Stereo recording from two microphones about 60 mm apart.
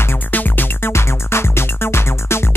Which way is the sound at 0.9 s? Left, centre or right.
Left.